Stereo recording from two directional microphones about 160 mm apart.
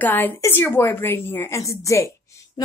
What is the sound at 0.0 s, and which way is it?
A woman's voice, 10° left (ahead or behind).